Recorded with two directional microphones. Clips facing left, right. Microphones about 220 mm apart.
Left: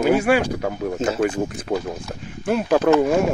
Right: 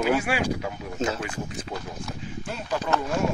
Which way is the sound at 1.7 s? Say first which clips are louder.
Left 9 dB; 60° left (ahead or behind).